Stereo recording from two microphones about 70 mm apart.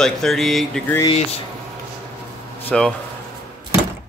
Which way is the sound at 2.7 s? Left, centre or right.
Centre.